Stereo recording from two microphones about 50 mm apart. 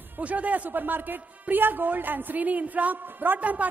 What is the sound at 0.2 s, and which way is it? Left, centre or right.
A man's voice, right.